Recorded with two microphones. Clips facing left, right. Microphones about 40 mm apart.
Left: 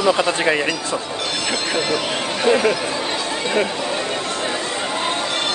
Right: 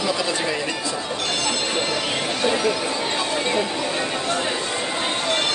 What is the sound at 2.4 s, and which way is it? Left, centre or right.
Speech, left.